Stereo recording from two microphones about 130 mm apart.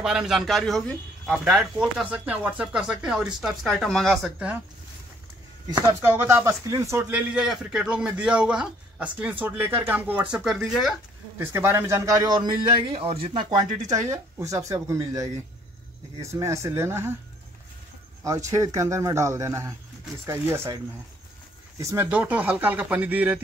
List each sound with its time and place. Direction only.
0.0 s speech: 5° right (ahead or behind)
1.4 s speech: 5° right (ahead or behind)
5.9 s speech: 20° right (ahead or behind)
10.3 s speech: 5° right (ahead or behind)
11.3 s a man's voice: 20° right (ahead or behind)
18.2 s a man's voice: 25° right (ahead or behind)
21.7 s speech: 20° right (ahead or behind)